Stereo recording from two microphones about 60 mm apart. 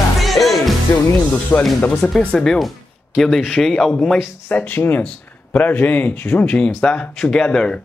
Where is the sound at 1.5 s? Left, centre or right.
Left.